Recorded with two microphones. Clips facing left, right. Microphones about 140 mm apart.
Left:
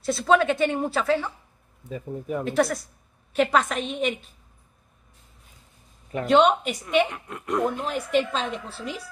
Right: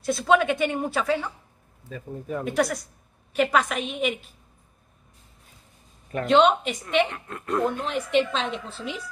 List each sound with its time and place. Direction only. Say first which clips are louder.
0.0 s speech: left 1 dB; centre (ahead or behind)
1.9 s speech: left 2 dB; 15° left (ahead or behind)
2.4 s speech: left 1 dB; centre (ahead or behind)
6.2 s speech: even; 10° left (ahead or behind)
8.2 s speech: right 1 dB; 5° left (ahead or behind)